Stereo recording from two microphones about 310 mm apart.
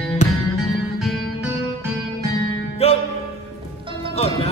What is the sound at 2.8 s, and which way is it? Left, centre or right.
Music, centre.